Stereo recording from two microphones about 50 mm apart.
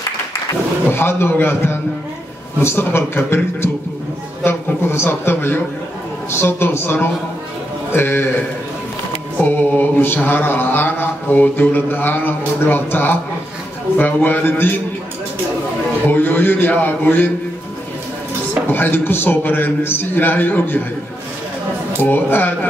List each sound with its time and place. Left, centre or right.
0.9 s mantra: left
2.6 s a man's voice: left
4.5 s mantra: left
9.4 s mantra: left
13.9 s a man's voice: left
16.1 s mantra: left
18.7 s mantra: left
22.0 s a man's voice: left